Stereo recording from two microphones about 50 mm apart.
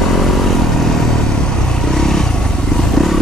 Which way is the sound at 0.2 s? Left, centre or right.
Centre.